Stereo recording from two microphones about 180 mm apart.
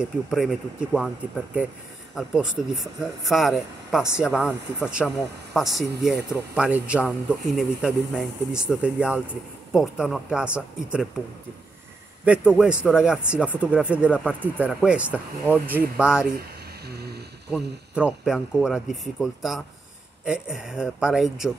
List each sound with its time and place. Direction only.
0.0 s speech: centre (ahead or behind)
4.3 s speech: 10° left (ahead or behind)
12.3 s speech: 5° right (ahead or behind)
16.3 s a sound: 60° right (ahead or behind)
17.5 s speech: 5° right (ahead or behind)